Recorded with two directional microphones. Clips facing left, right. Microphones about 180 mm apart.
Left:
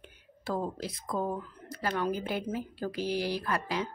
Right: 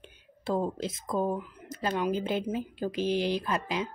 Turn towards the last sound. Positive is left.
turn(degrees=-20)  # may be behind; listen again after turning